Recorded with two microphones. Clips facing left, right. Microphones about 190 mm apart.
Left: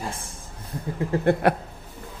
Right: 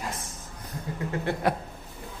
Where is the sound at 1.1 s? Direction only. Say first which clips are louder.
Left 8 dB; 35° left (ahead or behind).